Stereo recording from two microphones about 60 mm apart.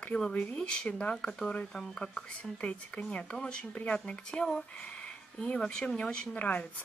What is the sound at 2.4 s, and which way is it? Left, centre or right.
A woman's voice, left.